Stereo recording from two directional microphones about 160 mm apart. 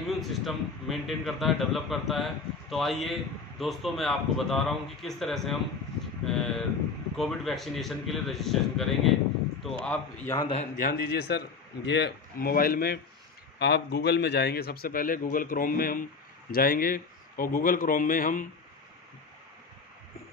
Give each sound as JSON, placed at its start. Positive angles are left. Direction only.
{"t": 0.2, "sound": "a man's voice", "side_deg": 0}
{"t": 10.5, "sound": "a man's voice", "side_deg": 55}
{"t": 13.6, "sound": "a man's voice", "side_deg": 90}